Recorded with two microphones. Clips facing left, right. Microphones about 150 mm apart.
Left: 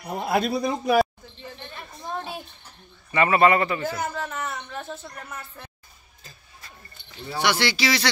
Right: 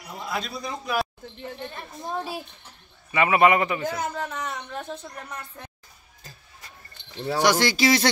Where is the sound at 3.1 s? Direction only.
10° right (ahead or behind).